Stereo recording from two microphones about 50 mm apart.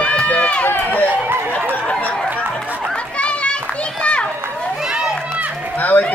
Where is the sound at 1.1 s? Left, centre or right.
Right.